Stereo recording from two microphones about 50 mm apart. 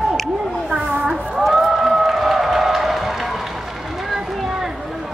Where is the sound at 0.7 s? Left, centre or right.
Right.